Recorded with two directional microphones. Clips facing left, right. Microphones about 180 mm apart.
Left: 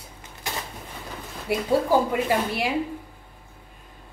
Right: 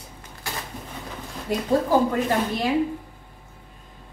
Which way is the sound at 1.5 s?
10° left (ahead or behind).